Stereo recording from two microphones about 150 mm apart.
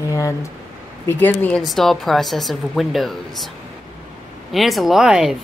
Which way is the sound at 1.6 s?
Centre (ahead or behind).